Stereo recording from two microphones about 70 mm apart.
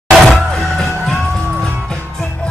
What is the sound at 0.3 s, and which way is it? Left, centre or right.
Music, centre.